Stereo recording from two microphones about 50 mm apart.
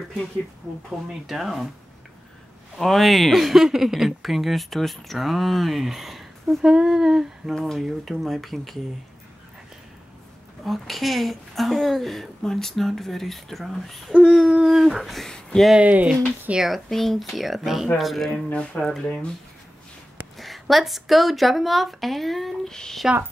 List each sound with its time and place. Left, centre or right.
1.2 s speech: centre
2.8 s speech: centre
6.6 s humming: centre
7.5 s speech: centre
10.6 s speech: centre
14.3 s speech: centre
15.2 s a sound: centre
15.8 s speech: right
16.5 s speech: centre
18.5 s speech: centre
20.3 s speech: centre
22.7 s speech: centre